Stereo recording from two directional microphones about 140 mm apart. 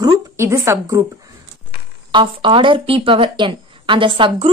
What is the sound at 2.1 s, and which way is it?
Speech, 40° right (ahead or behind).